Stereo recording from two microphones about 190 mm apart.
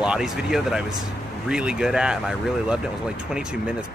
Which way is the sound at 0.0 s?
5° right (ahead or behind).